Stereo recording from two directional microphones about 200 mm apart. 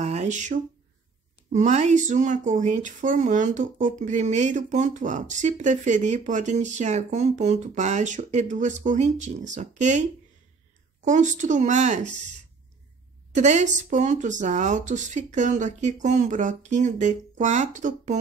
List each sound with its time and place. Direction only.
0.0 s a sound: 35° right (ahead or behind)
1.5 s speech: 35° right (ahead or behind)
11.1 s speech: 40° right (ahead or behind)
13.3 s speech: 35° right (ahead or behind)